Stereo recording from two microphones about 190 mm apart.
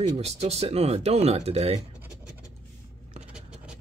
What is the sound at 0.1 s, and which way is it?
Speech, 35° right (ahead or behind).